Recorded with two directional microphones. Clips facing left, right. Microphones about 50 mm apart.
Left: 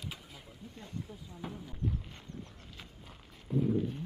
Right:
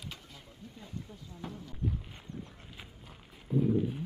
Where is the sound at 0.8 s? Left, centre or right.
Centre.